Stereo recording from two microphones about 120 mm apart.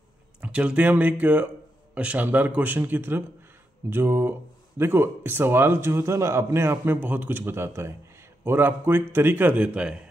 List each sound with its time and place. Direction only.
0.4 s speech: 10° right (ahead or behind)